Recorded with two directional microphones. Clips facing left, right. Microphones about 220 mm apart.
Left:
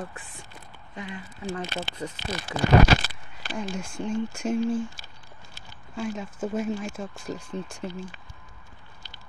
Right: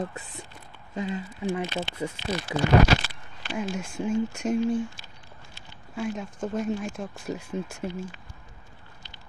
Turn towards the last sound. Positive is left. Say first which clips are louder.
# right 2 dB
turn(degrees=-5)  # may be behind; listen again after turning